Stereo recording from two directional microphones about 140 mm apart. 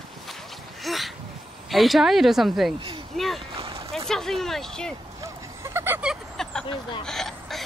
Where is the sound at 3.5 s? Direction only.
40° right (ahead or behind).